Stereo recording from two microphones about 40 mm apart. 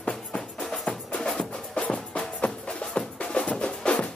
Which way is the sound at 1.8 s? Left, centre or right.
Left.